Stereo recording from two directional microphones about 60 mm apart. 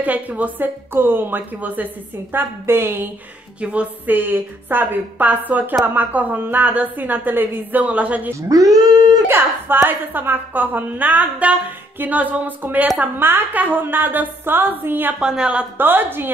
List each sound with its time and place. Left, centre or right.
0.0 s a woman's voice: right
4.1 s a woman's voice: right
7.8 s a woman's voice: right
8.4 s speech: right
9.3 s a woman's voice: right; by 13.1 s centre
13.2 s a woman's voice: right
15.1 s speech: centre
15.8 s a woman's voice: right